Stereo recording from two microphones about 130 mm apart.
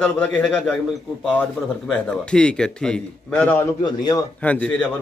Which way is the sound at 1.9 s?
10° left (ahead or behind).